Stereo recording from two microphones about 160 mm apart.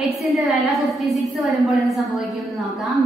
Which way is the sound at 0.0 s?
Centre (ahead or behind).